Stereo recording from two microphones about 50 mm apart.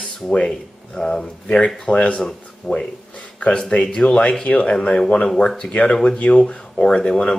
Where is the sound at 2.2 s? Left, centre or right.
Centre.